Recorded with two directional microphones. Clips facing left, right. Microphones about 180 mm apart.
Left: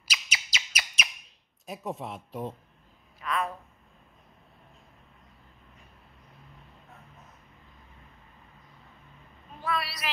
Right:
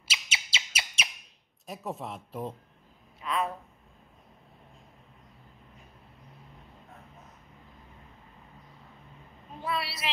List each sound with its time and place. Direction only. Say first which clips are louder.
0.0 s bird: left 1 dB; 25° right (ahead or behind)
1.7 s speech: left 1 dB; centre (ahead or behind)
3.2 s a woman's voice: even; 25° right (ahead or behind)
9.6 s a sound: left 1 dB; 25° right (ahead or behind)